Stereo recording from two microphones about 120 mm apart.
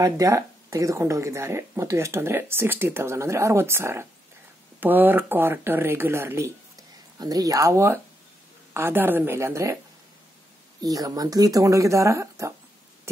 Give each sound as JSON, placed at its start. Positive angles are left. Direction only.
{"t": 0.0, "sound": "speech", "side_deg": -30}
{"t": 10.8, "sound": "speech", "side_deg": -30}